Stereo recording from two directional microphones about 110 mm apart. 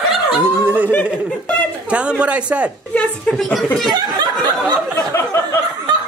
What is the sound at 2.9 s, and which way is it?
Speech, 10° left (ahead or behind).